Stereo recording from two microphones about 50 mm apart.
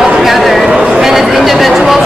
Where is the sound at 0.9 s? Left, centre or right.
Centre.